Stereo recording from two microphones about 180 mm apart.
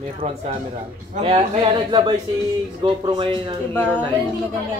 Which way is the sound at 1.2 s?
30° right (ahead or behind).